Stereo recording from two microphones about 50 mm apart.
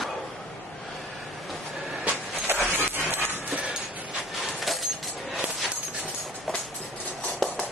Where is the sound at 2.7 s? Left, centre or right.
Right.